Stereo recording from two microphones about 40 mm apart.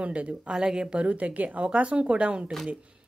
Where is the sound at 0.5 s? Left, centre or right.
Centre.